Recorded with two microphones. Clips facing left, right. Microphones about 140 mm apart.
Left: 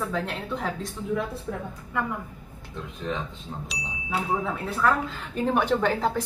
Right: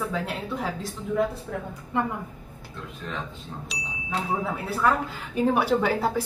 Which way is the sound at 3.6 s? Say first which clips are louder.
Left 1 dB; centre (ahead or behind).